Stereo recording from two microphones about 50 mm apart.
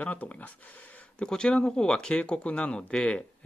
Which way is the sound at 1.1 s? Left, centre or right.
Centre.